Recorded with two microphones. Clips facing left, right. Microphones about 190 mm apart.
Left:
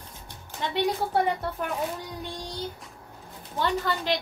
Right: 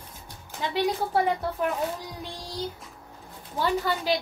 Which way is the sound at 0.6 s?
Centre (ahead or behind).